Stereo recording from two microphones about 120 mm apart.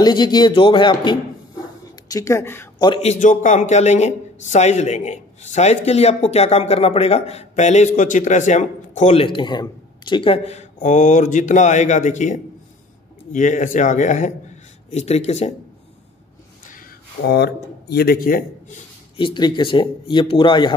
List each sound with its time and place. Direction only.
0.0 s speech: 35° left (ahead or behind)
2.0 s speech: 25° left (ahead or behind)
3.0 s speech: 80° left
5.9 s speech: 60° left (ahead or behind); by 9.1 s 85° left
9.1 s a man's voice: 45° left (ahead or behind); by 15.5 s 65° left (ahead or behind)
19.1 s speech: 40° left (ahead or behind)